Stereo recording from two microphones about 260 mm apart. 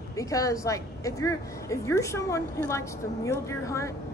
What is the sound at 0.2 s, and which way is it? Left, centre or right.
A woman's voice, centre.